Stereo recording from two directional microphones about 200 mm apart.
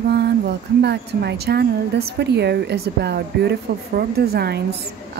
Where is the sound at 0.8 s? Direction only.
55° right (ahead or behind).